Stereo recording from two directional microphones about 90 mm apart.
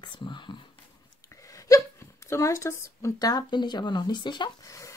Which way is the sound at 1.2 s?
40° left (ahead or behind).